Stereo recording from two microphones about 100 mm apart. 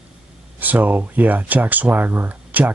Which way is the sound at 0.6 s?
15° right (ahead or behind).